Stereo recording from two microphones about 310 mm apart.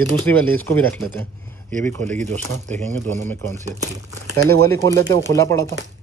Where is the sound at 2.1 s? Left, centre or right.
Right.